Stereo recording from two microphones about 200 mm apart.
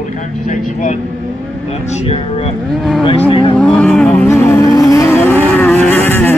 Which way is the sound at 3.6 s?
5° left (ahead or behind).